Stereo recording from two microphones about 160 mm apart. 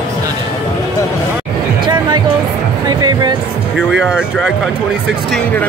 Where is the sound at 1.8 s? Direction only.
30° right (ahead or behind).